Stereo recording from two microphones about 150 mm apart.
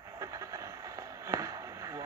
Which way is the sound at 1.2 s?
20° right (ahead or behind).